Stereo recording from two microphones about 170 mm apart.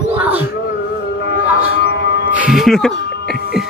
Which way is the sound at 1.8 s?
75° left (ahead or behind).